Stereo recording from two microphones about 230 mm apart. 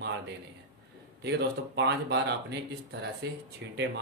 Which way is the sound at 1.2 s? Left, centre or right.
Right.